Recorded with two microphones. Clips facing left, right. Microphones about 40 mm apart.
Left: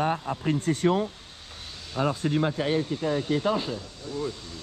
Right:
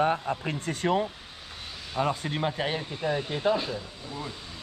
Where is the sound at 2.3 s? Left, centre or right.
Right.